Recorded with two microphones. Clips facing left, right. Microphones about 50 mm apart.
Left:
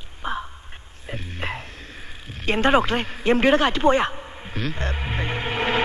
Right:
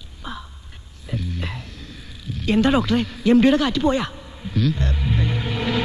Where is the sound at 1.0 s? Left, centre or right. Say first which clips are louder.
Right 2 dB; left.